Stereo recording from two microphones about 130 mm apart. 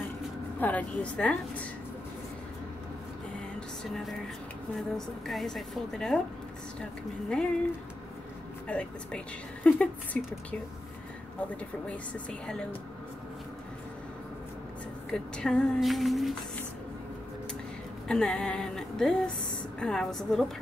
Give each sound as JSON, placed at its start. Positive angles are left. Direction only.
{"t": 0.6, "sound": "a woman's voice", "side_deg": 10}
{"t": 3.5, "sound": "music", "side_deg": 5}
{"t": 4.7, "sound": "a woman's voice", "side_deg": 0}
{"t": 8.6, "sound": "a woman's voice", "side_deg": 10}
{"t": 11.9, "sound": "a woman's voice", "side_deg": 5}
{"t": 15.0, "sound": "a woman's voice", "side_deg": 5}
{"t": 18.0, "sound": "a woman's voice", "side_deg": 5}